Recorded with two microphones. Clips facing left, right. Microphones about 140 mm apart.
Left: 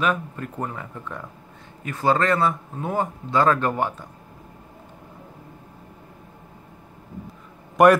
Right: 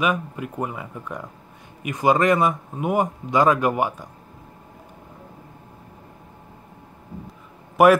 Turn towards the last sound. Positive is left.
turn(degrees=-5)  # may be behind; listen again after turning